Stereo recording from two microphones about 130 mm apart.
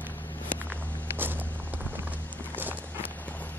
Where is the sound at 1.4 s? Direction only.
10° left (ahead or behind).